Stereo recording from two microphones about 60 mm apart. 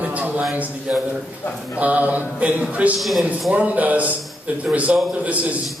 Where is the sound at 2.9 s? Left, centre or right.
Centre.